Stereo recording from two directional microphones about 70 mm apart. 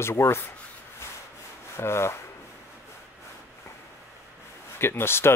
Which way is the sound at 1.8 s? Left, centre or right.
Left.